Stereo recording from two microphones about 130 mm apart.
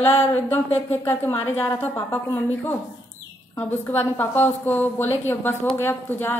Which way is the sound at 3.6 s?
15° left (ahead or behind).